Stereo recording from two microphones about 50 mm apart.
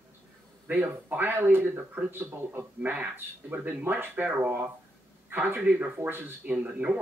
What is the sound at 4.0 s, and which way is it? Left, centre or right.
Speech, right.